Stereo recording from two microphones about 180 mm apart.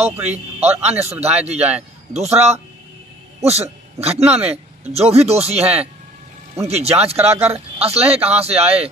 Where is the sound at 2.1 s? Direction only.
35° right (ahead or behind).